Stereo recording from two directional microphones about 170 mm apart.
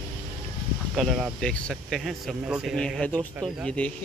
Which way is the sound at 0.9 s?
Centre (ahead or behind).